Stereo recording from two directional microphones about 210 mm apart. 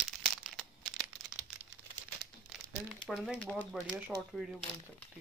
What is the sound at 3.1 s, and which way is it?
Speech, centre (ahead or behind).